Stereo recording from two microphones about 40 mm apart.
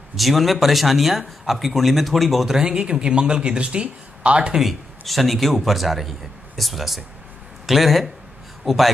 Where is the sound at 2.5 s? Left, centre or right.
Centre.